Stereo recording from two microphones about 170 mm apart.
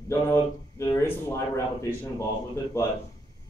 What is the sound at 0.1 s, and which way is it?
Speech, 15° left (ahead or behind).